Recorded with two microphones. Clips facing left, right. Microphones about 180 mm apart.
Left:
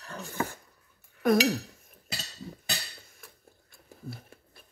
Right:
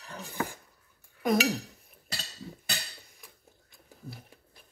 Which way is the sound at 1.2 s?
20° right (ahead or behind).